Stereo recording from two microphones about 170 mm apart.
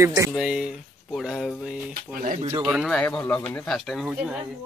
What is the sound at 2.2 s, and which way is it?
Speech, 50° right (ahead or behind).